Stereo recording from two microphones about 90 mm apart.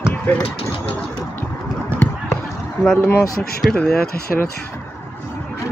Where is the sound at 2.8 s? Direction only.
5° left (ahead or behind).